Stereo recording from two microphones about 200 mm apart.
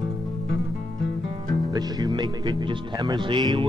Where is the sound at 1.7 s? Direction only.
20° right (ahead or behind).